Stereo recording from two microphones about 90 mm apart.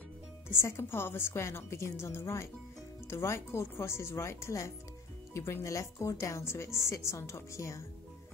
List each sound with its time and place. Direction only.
0.5 s a woman's voice: 30° left (ahead or behind)